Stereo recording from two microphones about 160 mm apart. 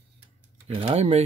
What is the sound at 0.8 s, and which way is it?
Speech, 40° right (ahead or behind).